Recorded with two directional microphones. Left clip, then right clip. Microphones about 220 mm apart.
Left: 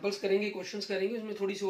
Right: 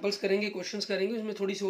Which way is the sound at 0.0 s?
50° right (ahead or behind).